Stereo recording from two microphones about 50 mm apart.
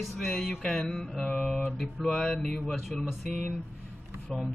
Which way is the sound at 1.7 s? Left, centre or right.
Centre.